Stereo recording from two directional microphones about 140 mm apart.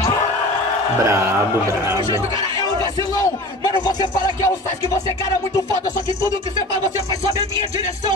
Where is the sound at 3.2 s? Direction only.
30° left (ahead or behind).